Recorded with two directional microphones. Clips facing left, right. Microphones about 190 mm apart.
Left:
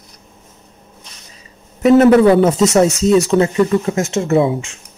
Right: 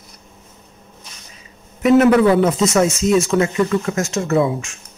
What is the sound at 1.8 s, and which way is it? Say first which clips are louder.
Speech: left 3 dB; 30° left (ahead or behind).